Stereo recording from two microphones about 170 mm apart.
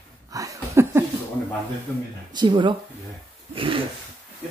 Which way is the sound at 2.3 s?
25° right (ahead or behind).